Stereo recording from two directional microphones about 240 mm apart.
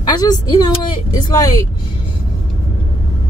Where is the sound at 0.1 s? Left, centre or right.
Centre.